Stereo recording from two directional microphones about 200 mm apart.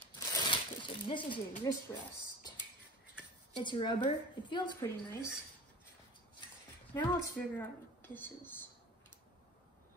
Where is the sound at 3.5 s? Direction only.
25° left (ahead or behind).